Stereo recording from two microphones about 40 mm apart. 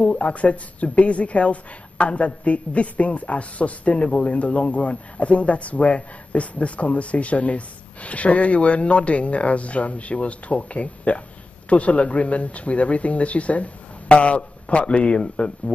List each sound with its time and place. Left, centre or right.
0.0 s speech: left